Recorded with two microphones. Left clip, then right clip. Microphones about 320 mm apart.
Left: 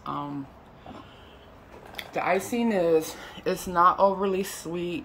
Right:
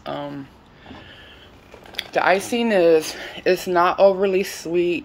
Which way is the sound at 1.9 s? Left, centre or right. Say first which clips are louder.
Right 8 dB; right.